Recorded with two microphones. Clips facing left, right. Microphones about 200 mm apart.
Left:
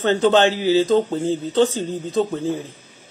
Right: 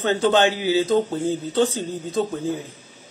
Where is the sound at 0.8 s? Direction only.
15° left (ahead or behind).